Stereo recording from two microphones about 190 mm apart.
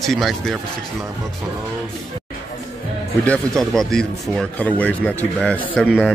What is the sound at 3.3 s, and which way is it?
Speech, centre (ahead or behind).